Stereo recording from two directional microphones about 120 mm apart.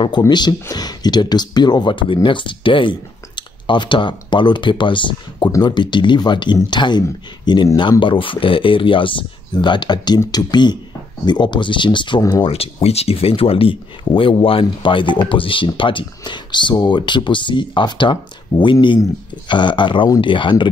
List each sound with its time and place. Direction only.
0.3 s speech: 35° left (ahead or behind)
12.4 s speech: 55° left (ahead or behind)